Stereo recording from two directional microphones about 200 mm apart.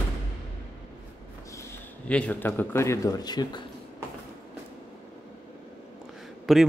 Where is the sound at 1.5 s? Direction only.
10° left (ahead or behind).